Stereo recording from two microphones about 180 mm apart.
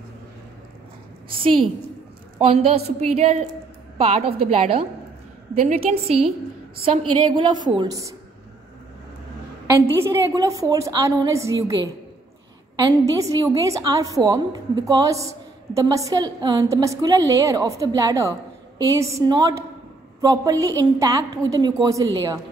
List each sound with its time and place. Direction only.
2.4 s a woman's voice: 35° right (ahead or behind)
9.8 s a woman's voice: 15° right (ahead or behind)